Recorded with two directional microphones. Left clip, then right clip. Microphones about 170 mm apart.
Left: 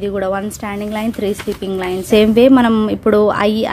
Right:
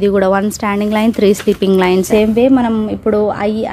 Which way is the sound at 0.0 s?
25° right (ahead or behind).